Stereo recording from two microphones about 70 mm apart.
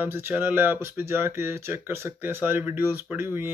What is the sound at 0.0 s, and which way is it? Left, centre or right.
Speech, right.